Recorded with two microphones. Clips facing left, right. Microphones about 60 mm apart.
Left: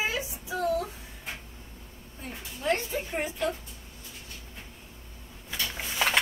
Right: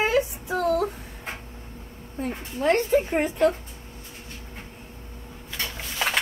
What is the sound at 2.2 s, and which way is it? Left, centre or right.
A woman's voice, right.